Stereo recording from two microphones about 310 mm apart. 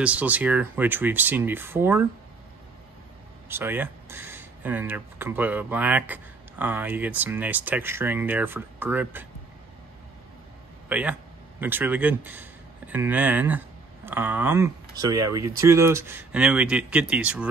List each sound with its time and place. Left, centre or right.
0.0 s speech: centre
3.4 s speech: centre
10.9 s a man's voice: centre